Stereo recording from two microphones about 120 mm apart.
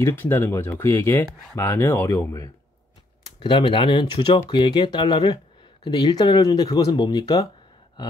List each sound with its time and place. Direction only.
0.0 s speech: 20° left (ahead or behind)
3.3 s speech: 40° left (ahead or behind)